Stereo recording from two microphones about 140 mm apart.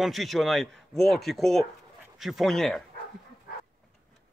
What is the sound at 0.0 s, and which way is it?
Speech, centre (ahead or behind).